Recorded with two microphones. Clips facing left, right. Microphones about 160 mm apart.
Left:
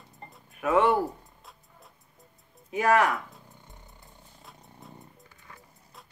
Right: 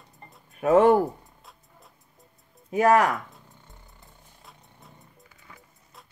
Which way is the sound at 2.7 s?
40° right (ahead or behind).